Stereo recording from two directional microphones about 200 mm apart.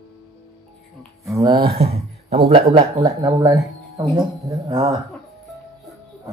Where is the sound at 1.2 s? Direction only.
15° right (ahead or behind).